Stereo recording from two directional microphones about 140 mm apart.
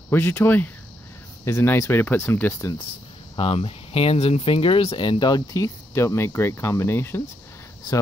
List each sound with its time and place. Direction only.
0.1 s speech: 15° left (ahead or behind)
3.3 s speech: 40° left (ahead or behind); by 7.2 s 15° left (ahead or behind)